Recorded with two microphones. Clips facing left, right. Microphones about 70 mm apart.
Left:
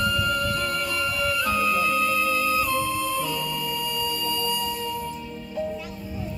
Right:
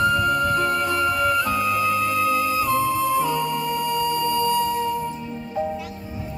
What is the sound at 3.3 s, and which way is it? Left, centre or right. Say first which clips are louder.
Music: right 6 dB; right.